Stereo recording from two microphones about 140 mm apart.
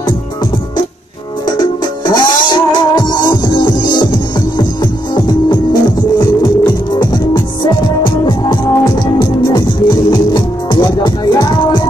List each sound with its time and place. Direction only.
1.6 s music: 30° left (ahead or behind)
5.1 s music: 30° left (ahead or behind)